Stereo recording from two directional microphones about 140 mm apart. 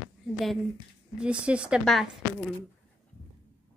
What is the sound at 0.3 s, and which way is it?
A woman's voice, centre (ahead or behind).